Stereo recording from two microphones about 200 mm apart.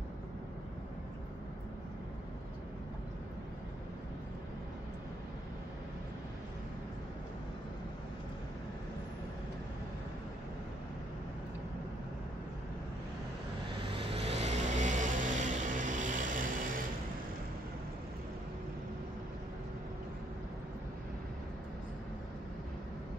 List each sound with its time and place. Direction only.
13.9 s vehicle: 30° right (ahead or behind)